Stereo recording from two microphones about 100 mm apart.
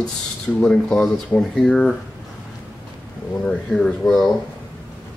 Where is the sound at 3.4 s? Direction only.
10° left (ahead or behind).